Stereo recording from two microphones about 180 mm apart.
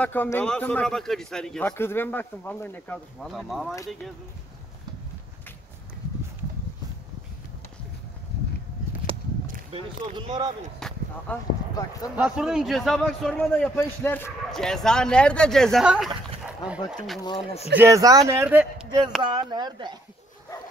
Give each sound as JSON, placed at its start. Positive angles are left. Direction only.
{"t": 0.0, "sound": "a man's voice", "side_deg": 10}
{"t": 3.3, "sound": "a man's voice", "side_deg": 0}
{"t": 9.0, "sound": "a sound", "side_deg": 50}
{"t": 9.7, "sound": "speech", "side_deg": -30}
{"t": 10.8, "sound": "a sound", "side_deg": 5}
{"t": 11.3, "sound": "a man's voice", "side_deg": 10}
{"t": 12.2, "sound": "a man's voice", "side_deg": -5}
{"t": 14.5, "sound": "a man's voice", "side_deg": 5}
{"t": 17.2, "sound": "speech", "side_deg": 25}
{"t": 17.7, "sound": "speech", "side_deg": -15}
{"t": 19.2, "sound": "speech", "side_deg": -25}